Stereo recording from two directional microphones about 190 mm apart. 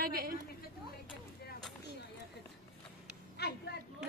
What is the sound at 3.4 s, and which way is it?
Speech, 60° left (ahead or behind).